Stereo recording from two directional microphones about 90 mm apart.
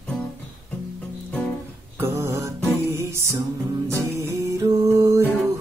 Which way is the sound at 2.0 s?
30° right (ahead or behind).